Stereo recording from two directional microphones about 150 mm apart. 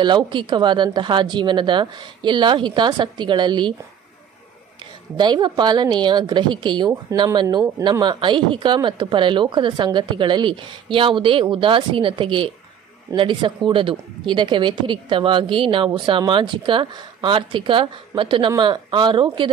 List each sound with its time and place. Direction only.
0.0 s speech: 30° right (ahead or behind)
5.1 s a woman's voice: 30° right (ahead or behind)